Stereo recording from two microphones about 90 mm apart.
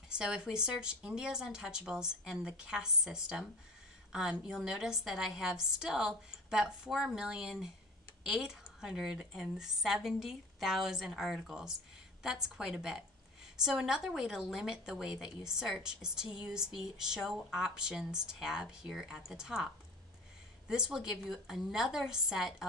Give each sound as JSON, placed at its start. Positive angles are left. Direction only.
{"t": 0.1, "sound": "a woman's voice", "side_deg": -10}